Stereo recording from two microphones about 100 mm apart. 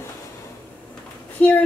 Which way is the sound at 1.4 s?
15° left (ahead or behind).